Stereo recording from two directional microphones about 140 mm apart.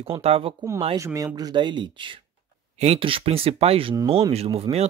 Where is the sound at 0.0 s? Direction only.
45° right (ahead or behind).